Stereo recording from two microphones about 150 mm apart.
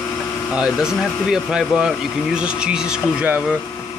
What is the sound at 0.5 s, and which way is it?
Speech, 5° right (ahead or behind).